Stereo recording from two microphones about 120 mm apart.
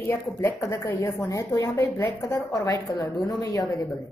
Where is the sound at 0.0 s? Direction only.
20° left (ahead or behind).